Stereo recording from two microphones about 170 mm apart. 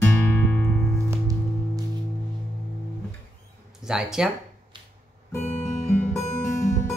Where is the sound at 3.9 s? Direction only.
5° right (ahead or behind).